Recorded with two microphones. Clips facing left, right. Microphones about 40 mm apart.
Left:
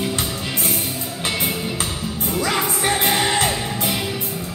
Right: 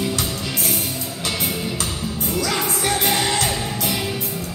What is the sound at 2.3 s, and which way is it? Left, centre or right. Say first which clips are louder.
Music: left 2 dB; left.